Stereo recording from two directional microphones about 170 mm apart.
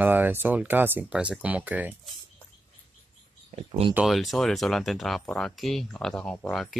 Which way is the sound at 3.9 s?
Centre (ahead or behind).